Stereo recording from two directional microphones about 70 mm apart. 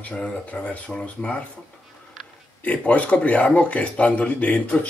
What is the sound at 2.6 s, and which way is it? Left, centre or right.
Speech, centre.